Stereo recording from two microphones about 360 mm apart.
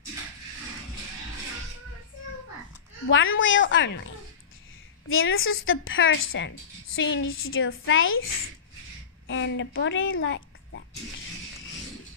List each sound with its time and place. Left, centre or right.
3.1 s a woman's voice: left
5.0 s a woman's voice: left
9.3 s speech: left